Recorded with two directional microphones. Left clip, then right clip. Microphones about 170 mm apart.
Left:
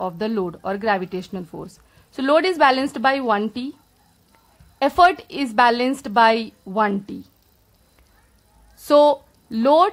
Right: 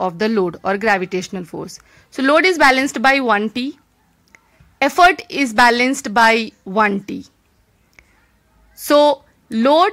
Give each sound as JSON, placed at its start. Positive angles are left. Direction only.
{"t": 0.0, "sound": "speech", "side_deg": -20}
{"t": 4.7, "sound": "speech", "side_deg": -15}
{"t": 8.8, "sound": "speech", "side_deg": -15}